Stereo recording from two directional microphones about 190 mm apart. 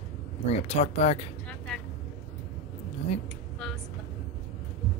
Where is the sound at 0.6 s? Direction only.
35° left (ahead or behind).